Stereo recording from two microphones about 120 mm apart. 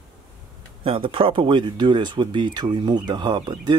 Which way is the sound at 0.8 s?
50° right (ahead or behind).